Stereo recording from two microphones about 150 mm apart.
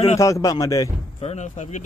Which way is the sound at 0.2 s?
20° left (ahead or behind).